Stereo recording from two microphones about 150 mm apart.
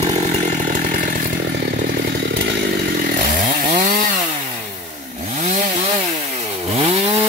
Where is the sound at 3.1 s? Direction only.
60° right (ahead or behind).